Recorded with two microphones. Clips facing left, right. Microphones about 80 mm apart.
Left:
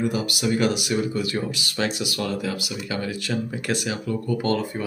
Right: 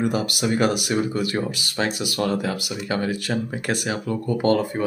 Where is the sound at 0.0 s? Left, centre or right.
Right.